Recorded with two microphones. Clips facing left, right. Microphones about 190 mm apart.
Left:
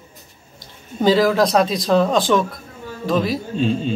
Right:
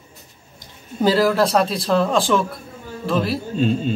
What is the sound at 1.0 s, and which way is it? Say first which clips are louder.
Speech: left 1 dB; 5° right (ahead or behind).